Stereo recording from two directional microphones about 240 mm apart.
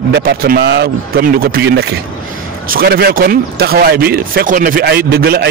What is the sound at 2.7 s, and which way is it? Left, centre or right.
A man's voice, right.